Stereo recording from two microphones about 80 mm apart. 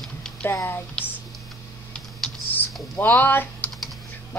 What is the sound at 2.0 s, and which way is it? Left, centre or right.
Typing, centre.